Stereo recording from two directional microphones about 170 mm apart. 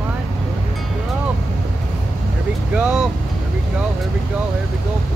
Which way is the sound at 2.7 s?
5° right (ahead or behind).